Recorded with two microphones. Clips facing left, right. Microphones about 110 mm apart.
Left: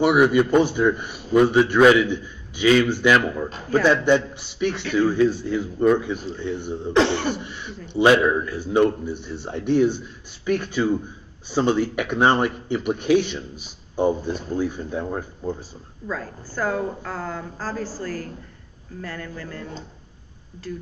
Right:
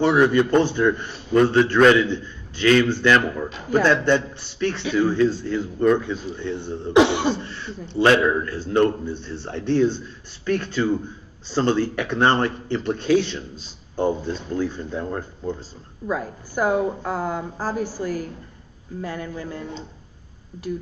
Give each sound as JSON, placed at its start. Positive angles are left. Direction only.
{"t": 0.0, "sound": "a man's voice", "side_deg": 10}
{"t": 3.2, "sound": "a man's voice", "side_deg": 0}
{"t": 3.8, "sound": "a man's voice", "side_deg": 10}
{"t": 6.9, "sound": "a woman's voice", "side_deg": -15}
{"t": 7.3, "sound": "a man's voice", "side_deg": 15}
{"t": 16.1, "sound": "a woman's voice", "side_deg": -15}